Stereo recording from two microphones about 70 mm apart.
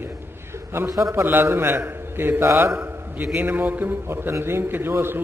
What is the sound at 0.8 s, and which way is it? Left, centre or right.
Speech, right.